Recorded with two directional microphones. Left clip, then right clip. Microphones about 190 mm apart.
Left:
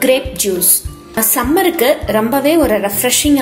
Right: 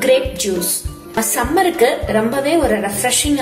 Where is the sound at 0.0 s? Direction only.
35° left (ahead or behind).